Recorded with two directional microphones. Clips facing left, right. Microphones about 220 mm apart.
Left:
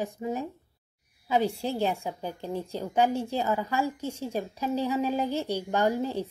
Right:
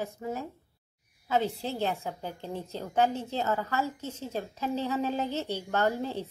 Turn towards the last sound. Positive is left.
turn(degrees=10)  # may be behind; listen again after turning